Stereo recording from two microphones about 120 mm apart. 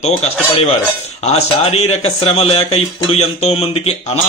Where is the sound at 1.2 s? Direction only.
65° left (ahead or behind).